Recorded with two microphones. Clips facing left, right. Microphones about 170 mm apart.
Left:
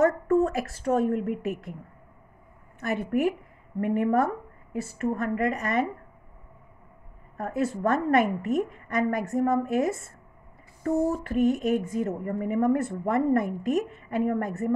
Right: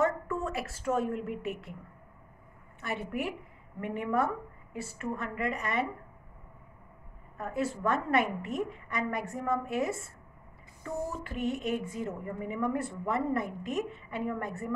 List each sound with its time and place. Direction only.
0.0 s a woman's voice: 40° left (ahead or behind)
2.8 s a woman's voice: 45° left (ahead or behind)
7.3 s a woman's voice: 40° left (ahead or behind)